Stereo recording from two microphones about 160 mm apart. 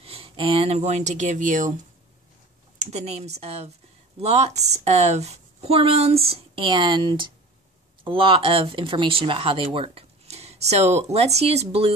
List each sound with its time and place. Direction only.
0.0 s speech: 35° right (ahead or behind); by 1.7 s 55° right (ahead or behind)
2.9 s speech: 40° right (ahead or behind)